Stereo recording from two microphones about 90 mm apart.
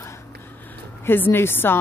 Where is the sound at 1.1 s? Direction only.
25° left (ahead or behind).